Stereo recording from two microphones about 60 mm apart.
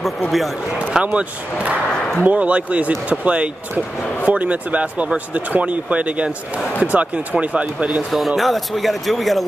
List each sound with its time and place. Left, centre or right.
0.9 s speech: right
8.4 s speech: centre